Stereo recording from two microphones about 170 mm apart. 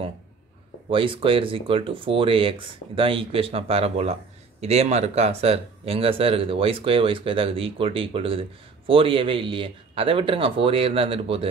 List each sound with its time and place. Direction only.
0.8 s speech: 30° right (ahead or behind)